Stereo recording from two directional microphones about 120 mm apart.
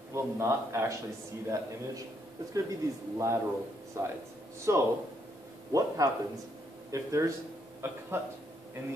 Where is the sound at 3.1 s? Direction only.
25° right (ahead or behind).